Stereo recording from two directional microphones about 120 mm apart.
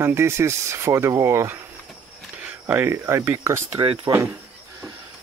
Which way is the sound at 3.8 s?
35° right (ahead or behind).